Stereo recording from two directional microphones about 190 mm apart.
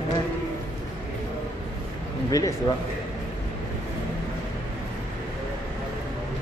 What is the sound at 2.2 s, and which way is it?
Speech, 20° left (ahead or behind).